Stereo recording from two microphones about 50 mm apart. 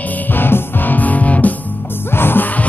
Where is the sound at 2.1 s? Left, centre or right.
Left.